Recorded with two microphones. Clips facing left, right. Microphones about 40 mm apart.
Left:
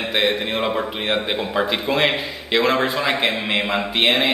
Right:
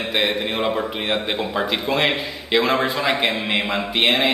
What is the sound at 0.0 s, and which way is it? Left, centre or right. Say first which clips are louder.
A man's voice: left 1 dB; centre.